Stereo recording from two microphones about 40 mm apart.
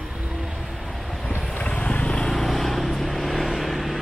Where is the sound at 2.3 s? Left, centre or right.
Centre.